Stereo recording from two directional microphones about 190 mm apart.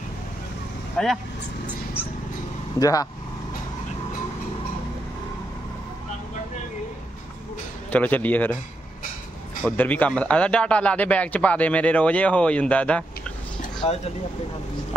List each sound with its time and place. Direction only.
1.0 s speech: 5° left (ahead or behind)
2.8 s speech: 20° left (ahead or behind)
7.9 s speech: 10° left (ahead or behind)
9.6 s speech: 10° left (ahead or behind)
13.7 s speech: 35° left (ahead or behind)